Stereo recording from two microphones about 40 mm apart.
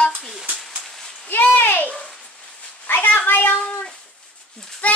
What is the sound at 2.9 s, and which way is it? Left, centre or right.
Speech, left.